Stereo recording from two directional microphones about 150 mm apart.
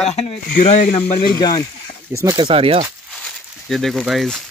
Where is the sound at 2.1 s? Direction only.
20° right (ahead or behind).